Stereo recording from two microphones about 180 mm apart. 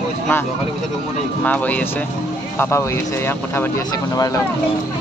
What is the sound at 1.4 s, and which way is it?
Speech, 10° left (ahead or behind).